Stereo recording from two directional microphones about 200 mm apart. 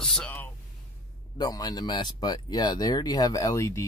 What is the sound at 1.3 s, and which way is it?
Speech, 20° left (ahead or behind).